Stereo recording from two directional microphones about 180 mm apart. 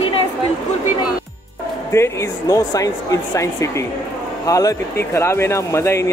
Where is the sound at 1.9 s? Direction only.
15° left (ahead or behind).